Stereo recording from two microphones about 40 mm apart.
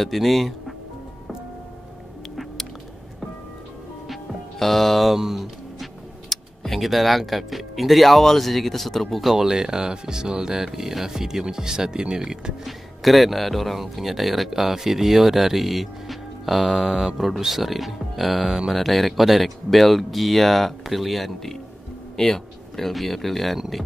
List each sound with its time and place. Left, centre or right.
0.0 s speech: centre
4.6 s speech: centre
5.1 s speech: centre
9.2 s speech: centre
12.6 s speech: centre
16.8 s speech: centre
17.2 s speech: centre